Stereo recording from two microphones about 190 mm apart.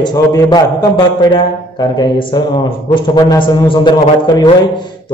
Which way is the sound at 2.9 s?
25° left (ahead or behind).